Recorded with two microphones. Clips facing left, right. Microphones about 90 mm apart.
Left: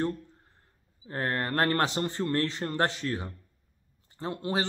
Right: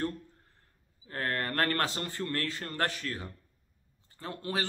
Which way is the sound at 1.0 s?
25° left (ahead or behind).